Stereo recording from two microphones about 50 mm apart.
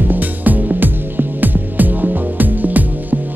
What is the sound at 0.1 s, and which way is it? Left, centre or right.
Music, right.